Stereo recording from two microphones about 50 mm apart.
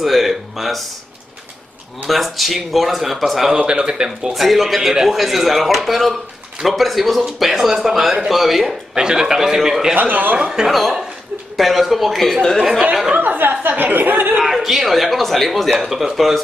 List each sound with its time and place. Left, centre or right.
0.0 s a sound: centre
2.0 s a man's voice: centre
3.5 s a man's voice: centre
4.3 s a man's voice: centre
8.9 s a man's voice: centre
9.9 s a woman's voice: right
10.3 s a man's voice: centre
10.7 s a man's voice: centre
12.9 s a man's voice: centre
13.2 s a woman's voice: right
14.3 s a man's voice: centre